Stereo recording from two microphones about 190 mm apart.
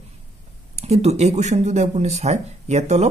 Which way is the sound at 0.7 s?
35° right (ahead or behind).